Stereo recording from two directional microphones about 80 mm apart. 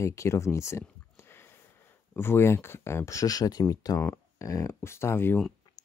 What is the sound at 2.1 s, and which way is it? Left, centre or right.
Speech, left.